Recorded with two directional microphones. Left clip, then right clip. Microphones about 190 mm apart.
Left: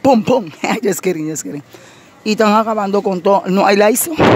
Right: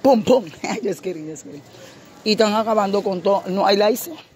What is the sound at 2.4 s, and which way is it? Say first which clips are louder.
Speech: left 5 dB; 30° left (ahead or behind).